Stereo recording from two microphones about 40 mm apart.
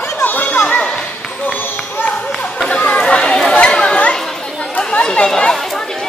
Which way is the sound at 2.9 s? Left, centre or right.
Left.